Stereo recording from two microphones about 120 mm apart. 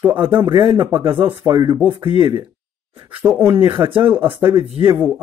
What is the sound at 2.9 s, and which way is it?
Speech, 40° right (ahead or behind).